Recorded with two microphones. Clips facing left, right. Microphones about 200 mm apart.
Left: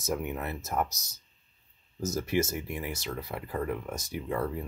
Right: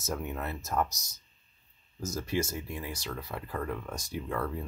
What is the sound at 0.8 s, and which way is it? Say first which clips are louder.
Speech: even; 5° left (ahead or behind).